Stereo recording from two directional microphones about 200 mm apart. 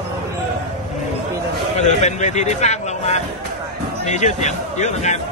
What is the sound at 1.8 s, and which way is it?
Speech, 35° left (ahead or behind).